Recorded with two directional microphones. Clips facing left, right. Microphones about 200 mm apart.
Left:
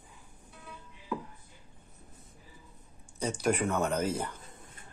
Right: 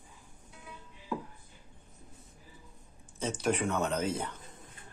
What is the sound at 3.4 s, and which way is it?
Speech, 10° left (ahead or behind).